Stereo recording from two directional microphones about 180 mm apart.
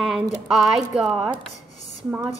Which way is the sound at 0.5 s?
5° right (ahead or behind).